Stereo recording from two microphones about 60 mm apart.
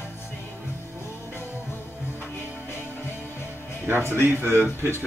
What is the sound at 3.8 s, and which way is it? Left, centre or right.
Speech, right.